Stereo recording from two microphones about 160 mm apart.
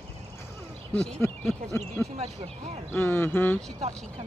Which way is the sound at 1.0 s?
5° left (ahead or behind).